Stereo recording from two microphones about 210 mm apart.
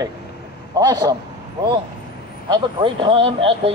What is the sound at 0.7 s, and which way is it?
Speech, 20° right (ahead or behind).